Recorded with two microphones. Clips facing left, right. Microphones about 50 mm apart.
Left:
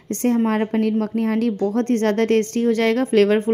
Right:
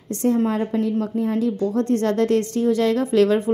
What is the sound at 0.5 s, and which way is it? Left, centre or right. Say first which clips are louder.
A woman's voice: left 2 dB; left.